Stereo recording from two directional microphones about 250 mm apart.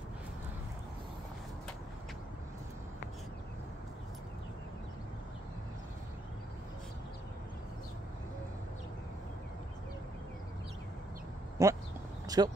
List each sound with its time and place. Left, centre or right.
11.6 s speech: centre